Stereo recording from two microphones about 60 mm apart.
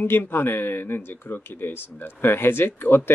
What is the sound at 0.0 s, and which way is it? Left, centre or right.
Speech, left.